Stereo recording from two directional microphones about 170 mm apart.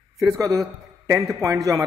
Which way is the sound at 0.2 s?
20° right (ahead or behind).